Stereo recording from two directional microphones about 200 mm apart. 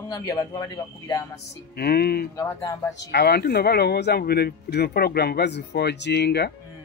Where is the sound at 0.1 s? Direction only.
20° left (ahead or behind).